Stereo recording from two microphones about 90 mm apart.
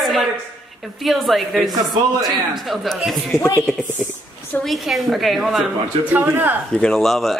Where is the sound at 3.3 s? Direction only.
35° left (ahead or behind).